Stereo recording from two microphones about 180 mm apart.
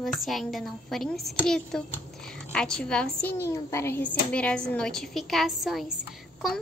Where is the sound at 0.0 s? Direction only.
Centre (ahead or behind).